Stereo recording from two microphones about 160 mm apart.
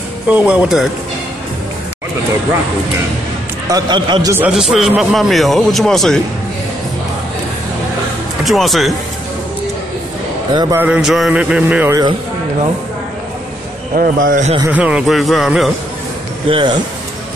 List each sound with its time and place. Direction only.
0.3 s a sound: 10° right (ahead or behind)
3.7 s a man's voice: 25° right (ahead or behind)
4.4 s a man's voice: 5° right (ahead or behind)
8.5 s a man's voice: centre (ahead or behind)
10.5 s a man's voice: 25° right (ahead or behind)
10.8 s a sound: 5° right (ahead or behind)
11.9 s a man's voice: 25° right (ahead or behind)
13.9 s speech: 60° right (ahead or behind)
14.7 s a man's voice: 5° right (ahead or behind)
16.4 s speech: 35° right (ahead or behind)